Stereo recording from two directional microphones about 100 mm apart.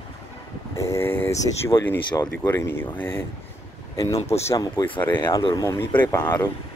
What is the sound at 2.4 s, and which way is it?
Speech, 25° left (ahead or behind).